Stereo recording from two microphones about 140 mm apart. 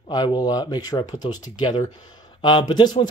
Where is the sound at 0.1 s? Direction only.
30° left (ahead or behind).